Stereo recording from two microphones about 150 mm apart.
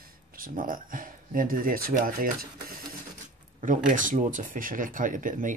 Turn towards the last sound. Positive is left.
turn(degrees=-60)  # may be behind; listen again after turning